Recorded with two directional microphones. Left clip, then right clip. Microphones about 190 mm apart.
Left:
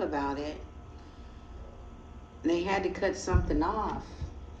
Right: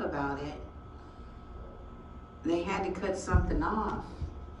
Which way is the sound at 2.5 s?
45° left (ahead or behind).